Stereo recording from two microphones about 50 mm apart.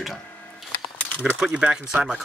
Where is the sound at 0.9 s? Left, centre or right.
Left.